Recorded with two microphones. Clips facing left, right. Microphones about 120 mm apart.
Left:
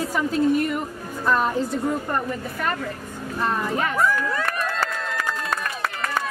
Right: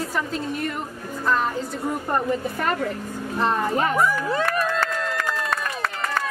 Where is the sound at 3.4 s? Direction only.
30° right (ahead or behind).